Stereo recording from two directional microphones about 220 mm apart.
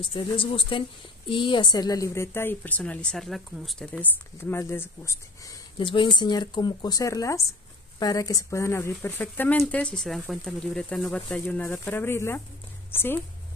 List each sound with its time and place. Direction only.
0.0 s a woman's voice: 25° left (ahead or behind)